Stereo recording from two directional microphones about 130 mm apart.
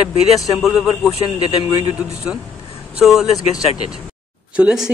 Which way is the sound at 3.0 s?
Centre (ahead or behind).